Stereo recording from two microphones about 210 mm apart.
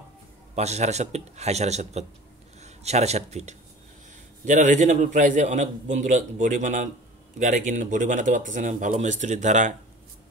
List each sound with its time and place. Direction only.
0.6 s a man's voice: 30° right (ahead or behind)